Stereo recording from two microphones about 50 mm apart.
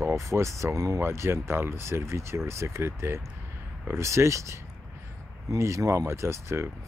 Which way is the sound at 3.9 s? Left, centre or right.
Right.